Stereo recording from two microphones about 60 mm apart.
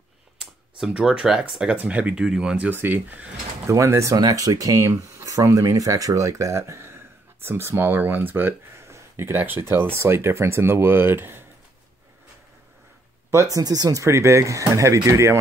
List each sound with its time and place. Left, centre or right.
0.4 s a sound: centre
1.0 s speech: centre
1.8 s speech: right
2.2 s speech: centre
2.7 s speech: right
3.6 s speech: right
8.8 s a sound: right
9.4 s speech: right
13.5 s speech: right
14.0 s speech: right